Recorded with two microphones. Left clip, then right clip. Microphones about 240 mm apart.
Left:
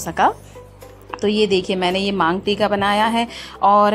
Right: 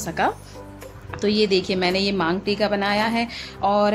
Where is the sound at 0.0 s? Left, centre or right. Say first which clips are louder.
Left 6 dB; centre.